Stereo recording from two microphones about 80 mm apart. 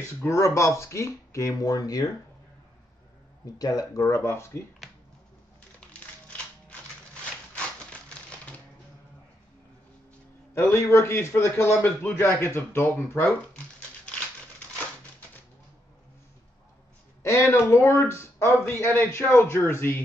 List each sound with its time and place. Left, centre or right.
0.0 s a man's voice: left
3.5 s a man's voice: left
5.8 s crushing: centre
7.5 s a sound: centre
10.7 s a man's voice: left
13.2 s crumpling: centre
17.2 s a man's voice: left